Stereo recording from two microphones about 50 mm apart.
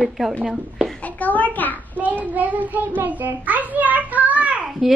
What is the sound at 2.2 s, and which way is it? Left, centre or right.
A child's voice, right.